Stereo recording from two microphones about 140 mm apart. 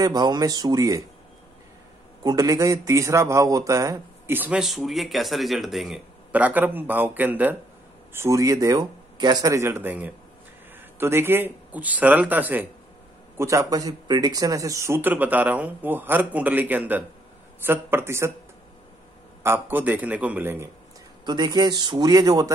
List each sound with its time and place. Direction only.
0.0 s speech: 30° right (ahead or behind)
2.2 s a man's voice: 25° right (ahead or behind)
19.4 s a man's voice: 15° right (ahead or behind)
21.3 s speech: 30° right (ahead or behind)